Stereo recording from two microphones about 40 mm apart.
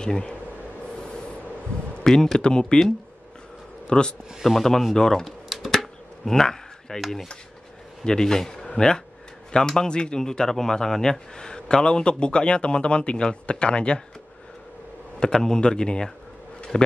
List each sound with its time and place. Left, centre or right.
2.0 s a man's voice: centre
3.8 s a man's voice: left
4.4 s speech: centre
5.5 s computer keyboard: centre
6.2 s a sound: centre
8.0 s a man's voice: centre
15.1 s a man's voice: centre